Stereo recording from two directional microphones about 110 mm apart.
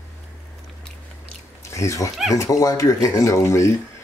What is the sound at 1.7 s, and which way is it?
Speech, 30° left (ahead or behind).